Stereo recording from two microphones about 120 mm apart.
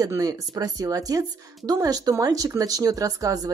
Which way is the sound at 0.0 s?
30° right (ahead or behind).